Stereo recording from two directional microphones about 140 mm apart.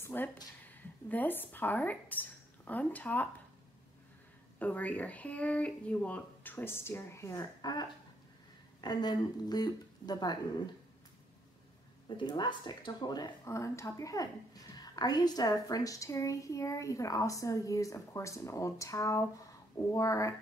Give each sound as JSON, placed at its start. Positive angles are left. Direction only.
{"t": 0.0, "sound": "a sound", "side_deg": 15}
{"t": 0.7, "sound": "speech", "side_deg": 10}
{"t": 4.6, "sound": "speech", "side_deg": 10}
{"t": 12.2, "sound": "speech", "side_deg": 30}